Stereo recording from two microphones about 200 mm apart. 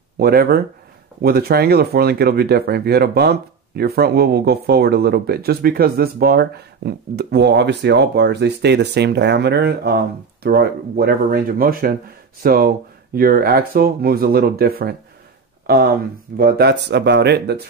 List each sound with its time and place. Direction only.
0.2 s speech: 50° right (ahead or behind)